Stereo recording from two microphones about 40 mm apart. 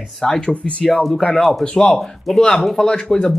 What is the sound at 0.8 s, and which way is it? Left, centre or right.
Speech, centre.